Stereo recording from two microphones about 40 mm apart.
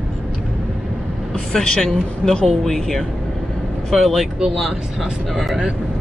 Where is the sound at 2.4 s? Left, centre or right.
Centre.